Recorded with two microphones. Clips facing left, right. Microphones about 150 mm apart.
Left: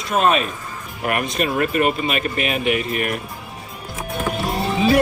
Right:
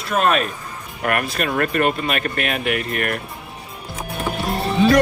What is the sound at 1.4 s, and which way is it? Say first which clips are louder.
Speech: left 2 dB; 50° right (ahead or behind).